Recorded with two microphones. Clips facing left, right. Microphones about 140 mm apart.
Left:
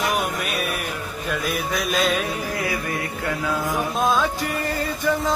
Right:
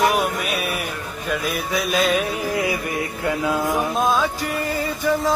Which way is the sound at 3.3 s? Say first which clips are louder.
Right 4 dB; 20° right (ahead or behind).